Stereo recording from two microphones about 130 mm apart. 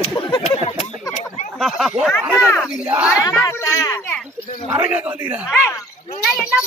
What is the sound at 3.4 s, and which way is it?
Speech, 25° left (ahead or behind).